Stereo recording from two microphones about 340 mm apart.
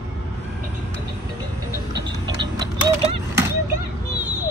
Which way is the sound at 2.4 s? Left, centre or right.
Centre.